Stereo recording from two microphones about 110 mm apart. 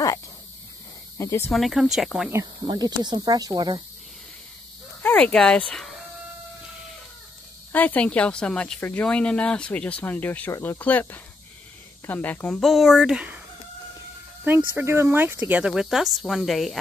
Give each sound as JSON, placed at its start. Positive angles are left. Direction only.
{"t": 1.1, "sound": "speech", "side_deg": 25}
{"t": 1.5, "sound": "speech", "side_deg": 0}
{"t": 2.7, "sound": "speech", "side_deg": -40}
{"t": 5.0, "sound": "speech", "side_deg": 10}
{"t": 7.7, "sound": "speech", "side_deg": 15}
{"t": 14.4, "sound": "speech", "side_deg": -15}